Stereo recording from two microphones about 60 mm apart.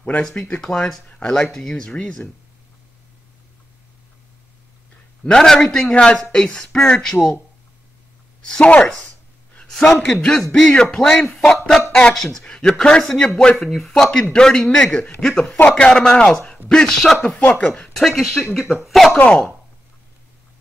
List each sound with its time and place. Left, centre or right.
0.2 s speech: centre
5.2 s speech: centre
8.4 s a woman's voice: centre
9.7 s a man's voice: centre
15.6 s speech: centre
17.2 s speech: left
17.9 s speech: centre
19.1 s speech: left